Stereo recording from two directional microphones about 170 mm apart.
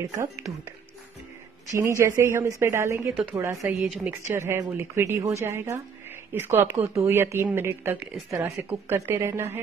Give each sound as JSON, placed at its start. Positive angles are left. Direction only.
{"t": 1.7, "sound": "speech", "side_deg": -15}
{"t": 3.8, "sound": "speech", "side_deg": -5}